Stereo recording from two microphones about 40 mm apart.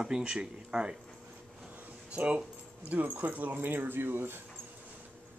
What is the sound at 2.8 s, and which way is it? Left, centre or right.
Speech, right.